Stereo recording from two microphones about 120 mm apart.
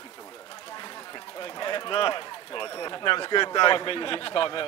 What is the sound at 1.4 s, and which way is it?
Speech, 40° left (ahead or behind).